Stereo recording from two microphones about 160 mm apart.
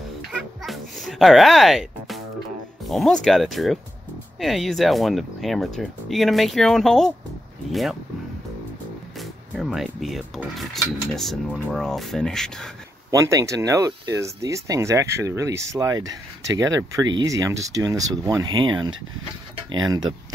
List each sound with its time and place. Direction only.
0.3 s music: centre (ahead or behind)
2.9 s speech: centre (ahead or behind)
9.2 s speech: centre (ahead or behind)
13.1 s speech: 20° right (ahead or behind)